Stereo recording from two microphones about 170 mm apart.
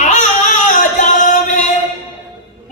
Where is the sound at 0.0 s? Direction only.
45° left (ahead or behind).